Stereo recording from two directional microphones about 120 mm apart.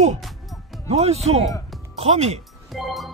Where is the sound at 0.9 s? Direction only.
60° right (ahead or behind).